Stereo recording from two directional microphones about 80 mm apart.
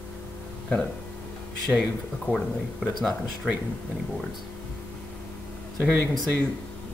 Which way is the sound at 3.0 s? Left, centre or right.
Centre.